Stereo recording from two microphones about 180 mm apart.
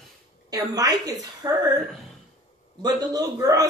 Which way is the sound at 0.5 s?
20° right (ahead or behind).